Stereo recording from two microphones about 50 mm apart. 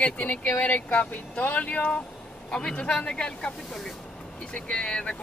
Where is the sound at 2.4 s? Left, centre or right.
Left.